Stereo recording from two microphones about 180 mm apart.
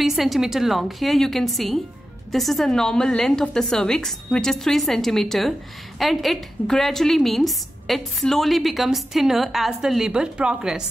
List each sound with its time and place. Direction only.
0.0 s a woman's voice: centre (ahead or behind)